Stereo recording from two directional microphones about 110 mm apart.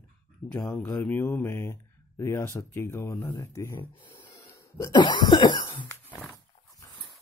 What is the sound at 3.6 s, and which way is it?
Speech, 20° left (ahead or behind).